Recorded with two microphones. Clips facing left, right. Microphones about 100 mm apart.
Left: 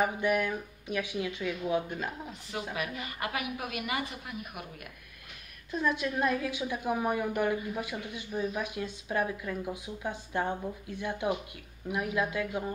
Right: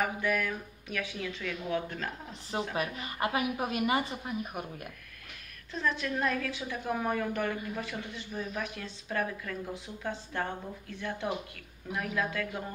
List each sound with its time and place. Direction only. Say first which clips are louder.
0.0 s a woman's voice: left 3 dB; 20° left (ahead or behind)
2.7 s speech: right 2 dB; 35° right (ahead or behind)
5.7 s a woman's voice: left 2 dB; 15° left (ahead or behind)